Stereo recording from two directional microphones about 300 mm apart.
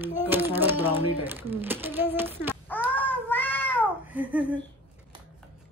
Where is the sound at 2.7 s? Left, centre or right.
Centre.